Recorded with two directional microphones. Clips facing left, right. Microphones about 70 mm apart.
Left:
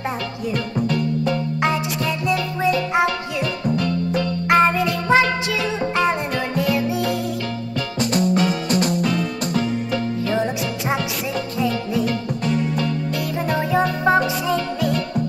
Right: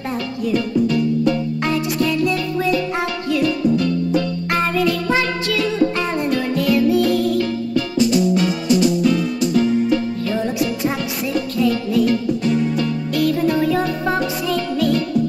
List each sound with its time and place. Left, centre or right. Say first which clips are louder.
1.6 s music: right 2 dB; centre
4.5 s music: left 4 dB; left
8.0 s music: right 2 dB; left
10.3 s music: right 3 dB; left
13.1 s music: right 5 dB; left